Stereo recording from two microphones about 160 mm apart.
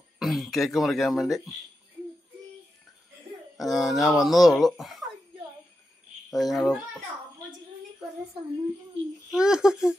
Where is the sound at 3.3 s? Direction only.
35° right (ahead or behind).